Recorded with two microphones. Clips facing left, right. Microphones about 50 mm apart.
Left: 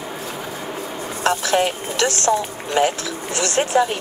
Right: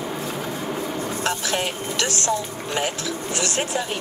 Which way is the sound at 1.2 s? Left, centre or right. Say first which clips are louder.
Left 9 dB; left.